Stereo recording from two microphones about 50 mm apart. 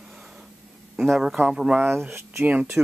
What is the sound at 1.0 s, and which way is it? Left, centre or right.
Speech, centre.